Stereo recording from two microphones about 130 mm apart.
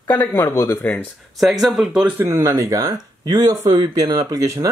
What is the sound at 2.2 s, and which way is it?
Speech, 20° right (ahead or behind).